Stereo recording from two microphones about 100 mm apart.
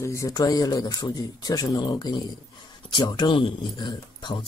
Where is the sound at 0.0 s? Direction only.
30° left (ahead or behind).